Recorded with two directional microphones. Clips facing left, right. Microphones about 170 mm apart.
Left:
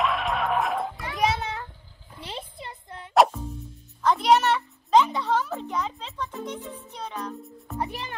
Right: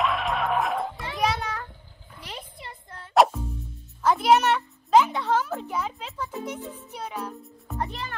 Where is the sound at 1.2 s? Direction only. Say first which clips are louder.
Left 1 dB; 25° left (ahead or behind).